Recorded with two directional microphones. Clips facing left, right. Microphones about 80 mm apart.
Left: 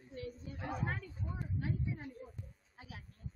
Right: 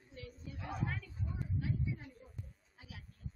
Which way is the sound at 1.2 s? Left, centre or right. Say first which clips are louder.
Even; left.